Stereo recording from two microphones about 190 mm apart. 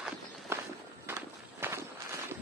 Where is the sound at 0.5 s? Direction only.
10° right (ahead or behind).